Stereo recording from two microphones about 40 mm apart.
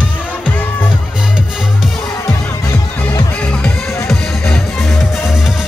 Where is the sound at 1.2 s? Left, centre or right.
Centre.